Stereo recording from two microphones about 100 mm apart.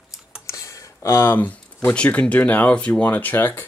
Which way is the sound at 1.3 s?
15° left (ahead or behind).